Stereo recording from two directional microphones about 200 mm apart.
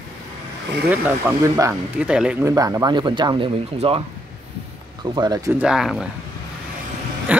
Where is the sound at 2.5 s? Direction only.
15° right (ahead or behind).